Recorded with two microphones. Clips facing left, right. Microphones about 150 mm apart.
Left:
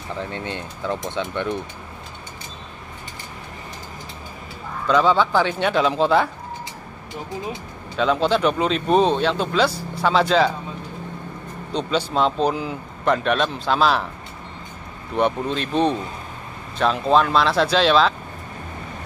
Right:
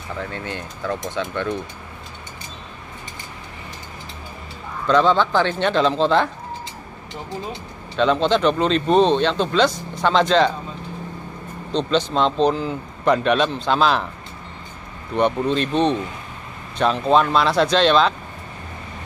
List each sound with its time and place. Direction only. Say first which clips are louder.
0.2 s speech: even; 20° left (ahead or behind)
4.8 s speech: right 1 dB; 5° left (ahead or behind)
7.9 s speech: right 2 dB; 5° left (ahead or behind)
11.7 s speech: right 2 dB; 10° left (ahead or behind)
15.1 s speech: right 2 dB; 5° left (ahead or behind)